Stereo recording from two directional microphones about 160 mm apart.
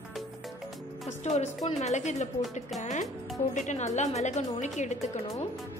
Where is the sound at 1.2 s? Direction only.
45° left (ahead or behind).